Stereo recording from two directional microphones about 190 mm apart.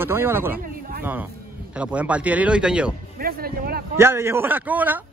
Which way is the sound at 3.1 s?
50° right (ahead or behind).